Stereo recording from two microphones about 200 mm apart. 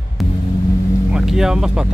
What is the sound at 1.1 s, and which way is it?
Speech, 5° right (ahead or behind).